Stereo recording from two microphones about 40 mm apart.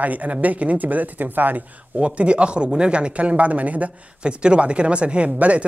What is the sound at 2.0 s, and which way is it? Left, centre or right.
Speech, right.